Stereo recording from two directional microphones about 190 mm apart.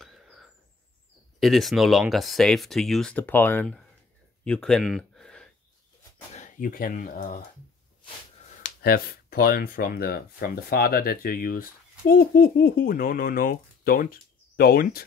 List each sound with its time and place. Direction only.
0.0 s a sound: centre (ahead or behind)
1.4 s speech: centre (ahead or behind)
6.3 s speech: 45° left (ahead or behind)
8.5 s speech: 45° left (ahead or behind)